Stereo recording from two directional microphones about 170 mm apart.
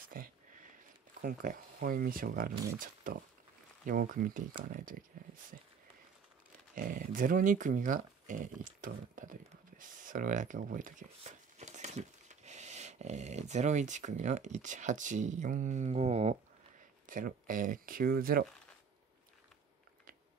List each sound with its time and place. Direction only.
0.1 s a sound: 55° right (ahead or behind)
1.2 s speech: 55° right (ahead or behind)
6.7 s speech: 55° right (ahead or behind); by 16.3 s 40° right (ahead or behind)
17.0 s speech: 50° right (ahead or behind)